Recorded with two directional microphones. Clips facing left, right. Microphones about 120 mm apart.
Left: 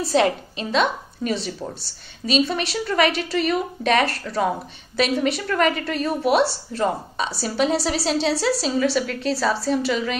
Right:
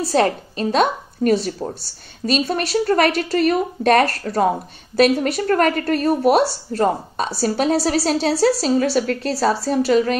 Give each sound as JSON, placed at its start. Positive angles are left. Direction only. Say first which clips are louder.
{"t": 0.0, "sound": "a woman's voice", "louder": "right 2 dB", "side_deg": -40}